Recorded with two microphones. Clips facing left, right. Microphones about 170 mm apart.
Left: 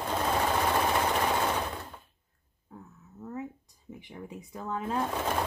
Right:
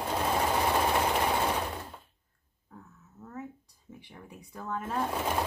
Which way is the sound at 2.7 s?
15° left (ahead or behind).